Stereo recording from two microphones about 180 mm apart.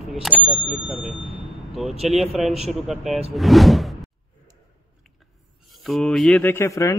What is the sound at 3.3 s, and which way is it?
Whoosh, centre (ahead or behind).